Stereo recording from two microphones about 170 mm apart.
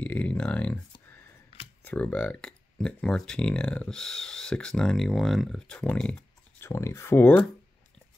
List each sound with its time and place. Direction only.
0.0 s speech: 10° left (ahead or behind)
1.9 s speech: 10° left (ahead or behind)
6.7 s speech: 15° left (ahead or behind)